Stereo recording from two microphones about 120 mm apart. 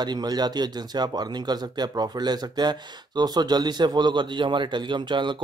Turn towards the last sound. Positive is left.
turn(degrees=-40)  # may be behind; listen again after turning